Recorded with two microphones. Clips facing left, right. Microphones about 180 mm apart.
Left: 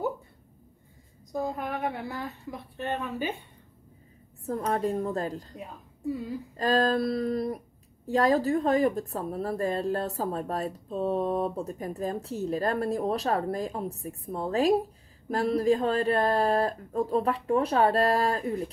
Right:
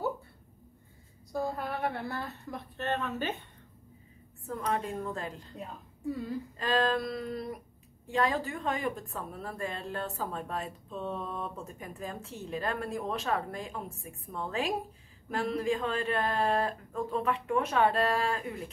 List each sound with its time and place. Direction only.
1.3 s a woman's voice: 20° left (ahead or behind)
4.5 s a woman's voice: 40° left (ahead or behind)